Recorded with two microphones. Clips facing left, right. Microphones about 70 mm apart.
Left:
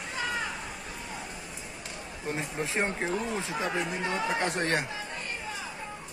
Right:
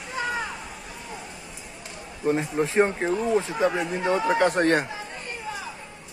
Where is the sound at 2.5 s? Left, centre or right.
Right.